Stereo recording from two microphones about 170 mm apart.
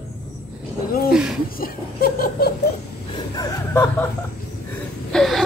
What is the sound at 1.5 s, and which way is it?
Laughter, 60° left (ahead or behind).